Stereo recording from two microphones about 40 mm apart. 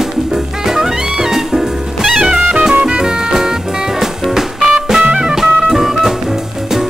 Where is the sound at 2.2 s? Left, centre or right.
Right.